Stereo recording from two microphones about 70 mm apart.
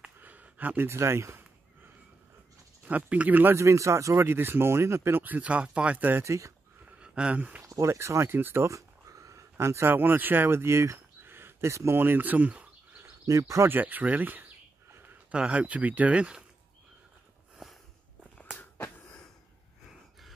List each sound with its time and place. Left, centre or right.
0.2 s a sound: right
0.8 s a sound: right
2.8 s speech: right
3.5 s speech: right
6.2 s speech: right
7.0 s speech: centre
7.6 s speech: right
8.6 s speech: right
13.3 s speech: right
13.7 s speech: right
18.6 s wheeze: left